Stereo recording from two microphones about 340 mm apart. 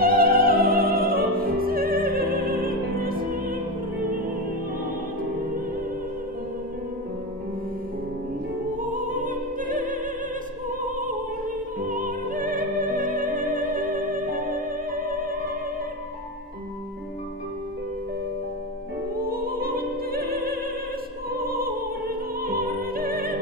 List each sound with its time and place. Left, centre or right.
0.0 s opera: right
8.7 s opera: right
11.9 s music: right
19.2 s music: right
22.4 s opera: right